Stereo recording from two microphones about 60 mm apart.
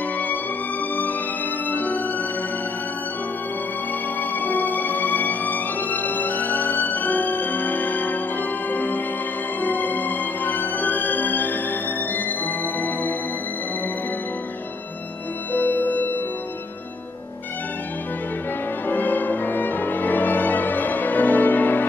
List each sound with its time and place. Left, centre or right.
1.7 s music: left
4.2 s music: left
15.5 s music: left
18.9 s music: left